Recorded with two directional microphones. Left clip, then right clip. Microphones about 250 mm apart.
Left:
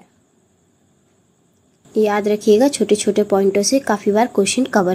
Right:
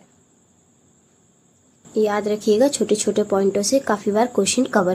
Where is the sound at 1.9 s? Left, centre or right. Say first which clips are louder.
Left 3 dB; centre.